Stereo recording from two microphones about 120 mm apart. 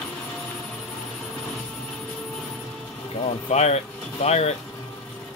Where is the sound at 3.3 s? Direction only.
65° left (ahead or behind).